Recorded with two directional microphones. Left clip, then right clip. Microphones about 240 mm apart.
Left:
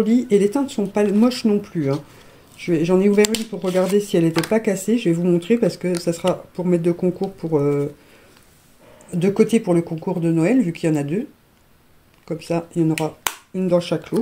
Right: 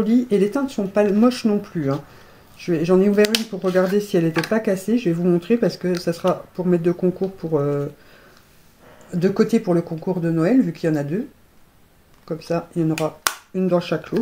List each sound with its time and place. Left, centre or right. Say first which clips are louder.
0.4 s speech: left 1 dB; left
9.4 s speech: left 3 dB; left
12.3 s speech: even; left